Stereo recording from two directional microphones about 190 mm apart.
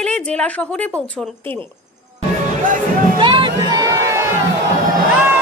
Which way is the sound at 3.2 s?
25° right (ahead or behind).